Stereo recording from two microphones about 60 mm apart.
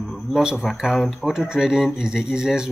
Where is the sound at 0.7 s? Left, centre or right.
Centre.